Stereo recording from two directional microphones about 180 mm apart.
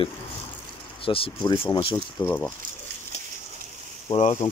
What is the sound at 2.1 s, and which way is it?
Speech, 10° left (ahead or behind).